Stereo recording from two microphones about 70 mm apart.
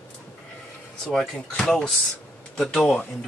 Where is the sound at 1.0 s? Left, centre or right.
Centre.